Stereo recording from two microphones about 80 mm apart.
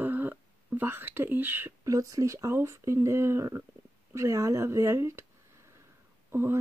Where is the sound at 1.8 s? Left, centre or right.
Right.